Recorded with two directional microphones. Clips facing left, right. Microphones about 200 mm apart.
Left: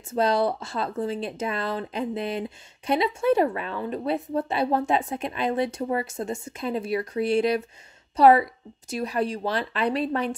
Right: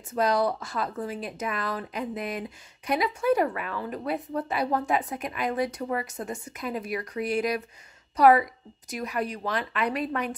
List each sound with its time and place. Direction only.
0.1 s speech: 25° left (ahead or behind)